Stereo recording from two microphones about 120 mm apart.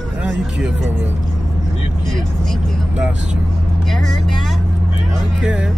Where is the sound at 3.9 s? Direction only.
5° left (ahead or behind).